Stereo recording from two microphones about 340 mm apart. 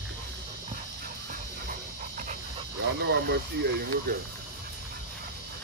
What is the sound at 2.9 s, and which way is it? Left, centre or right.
Speech, right.